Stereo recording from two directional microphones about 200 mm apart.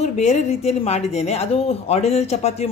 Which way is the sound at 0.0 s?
35° left (ahead or behind).